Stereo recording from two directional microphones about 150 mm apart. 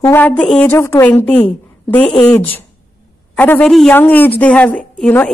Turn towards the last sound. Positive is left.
turn(degrees=10)  # may be behind; listen again after turning